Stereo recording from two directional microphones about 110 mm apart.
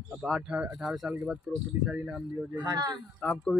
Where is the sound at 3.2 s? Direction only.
5° left (ahead or behind).